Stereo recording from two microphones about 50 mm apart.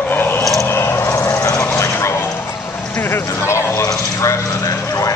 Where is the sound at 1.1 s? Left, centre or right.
Left.